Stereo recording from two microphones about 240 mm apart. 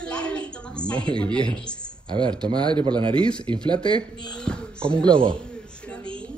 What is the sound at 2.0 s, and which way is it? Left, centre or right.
Speech, centre.